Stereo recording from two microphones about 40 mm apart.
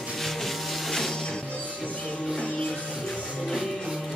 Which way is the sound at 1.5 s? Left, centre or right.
Left.